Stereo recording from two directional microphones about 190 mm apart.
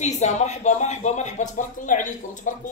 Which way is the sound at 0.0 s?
35° left (ahead or behind).